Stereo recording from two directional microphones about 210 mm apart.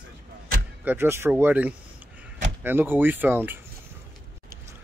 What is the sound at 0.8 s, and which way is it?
Speech, 10° right (ahead or behind).